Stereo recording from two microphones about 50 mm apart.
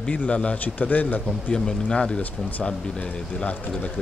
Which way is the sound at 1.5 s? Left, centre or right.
Centre.